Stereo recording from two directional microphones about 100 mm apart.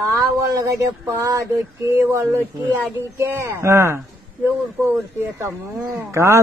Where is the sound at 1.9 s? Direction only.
25° right (ahead or behind).